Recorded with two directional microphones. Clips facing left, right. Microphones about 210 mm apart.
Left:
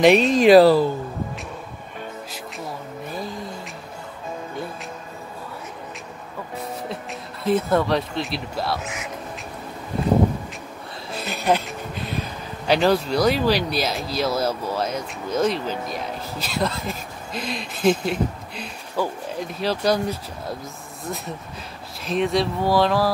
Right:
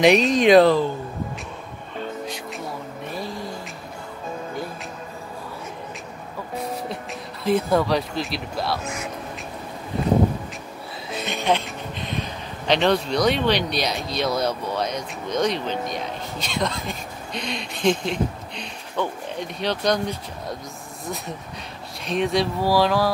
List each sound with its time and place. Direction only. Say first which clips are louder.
0.0 s speech: left 2 dB; centre (ahead or behind)
2.2 s music: right 2 dB; centre (ahead or behind)
7.4 s speech: even; centre (ahead or behind)
11.1 s speech: left 1 dB; centre (ahead or behind)